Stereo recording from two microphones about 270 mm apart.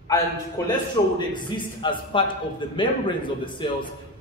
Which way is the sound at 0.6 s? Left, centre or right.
Centre.